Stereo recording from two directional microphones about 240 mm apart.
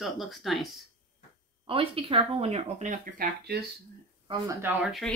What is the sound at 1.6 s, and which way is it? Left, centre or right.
Speech, right.